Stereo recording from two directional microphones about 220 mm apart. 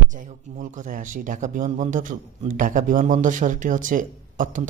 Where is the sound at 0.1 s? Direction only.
35° right (ahead or behind).